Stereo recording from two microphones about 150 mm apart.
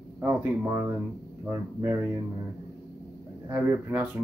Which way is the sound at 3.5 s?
10° right (ahead or behind).